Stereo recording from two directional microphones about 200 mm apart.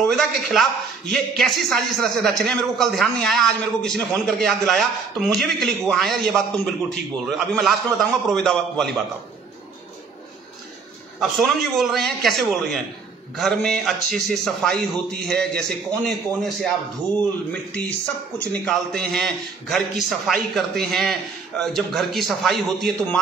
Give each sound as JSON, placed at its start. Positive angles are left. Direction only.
{"t": 0.0, "sound": "a man's voice", "side_deg": 0}
{"t": 11.1, "sound": "a man's voice", "side_deg": 0}